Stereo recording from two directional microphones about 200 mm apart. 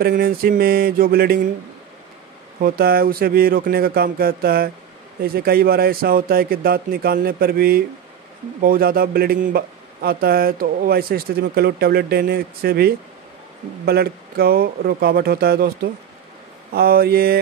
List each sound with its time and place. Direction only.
0.0 s speech: 50° right (ahead or behind)
2.6 s speech: 50° right (ahead or behind)